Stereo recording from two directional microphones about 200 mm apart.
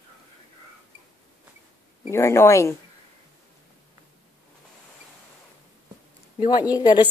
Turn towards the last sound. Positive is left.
turn(degrees=20)  # may be behind; listen again after turning